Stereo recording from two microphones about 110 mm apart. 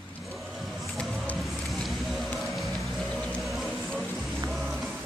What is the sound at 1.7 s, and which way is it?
Vehicle, centre (ahead or behind).